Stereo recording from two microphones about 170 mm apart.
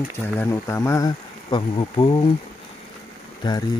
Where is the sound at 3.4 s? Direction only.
25° left (ahead or behind).